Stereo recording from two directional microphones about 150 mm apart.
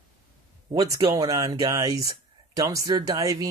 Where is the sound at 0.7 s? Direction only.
25° right (ahead or behind).